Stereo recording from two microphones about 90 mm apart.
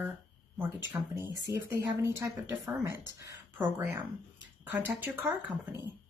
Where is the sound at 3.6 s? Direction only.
25° right (ahead or behind).